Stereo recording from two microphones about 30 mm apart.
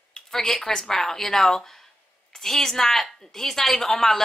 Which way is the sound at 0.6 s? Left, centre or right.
Centre.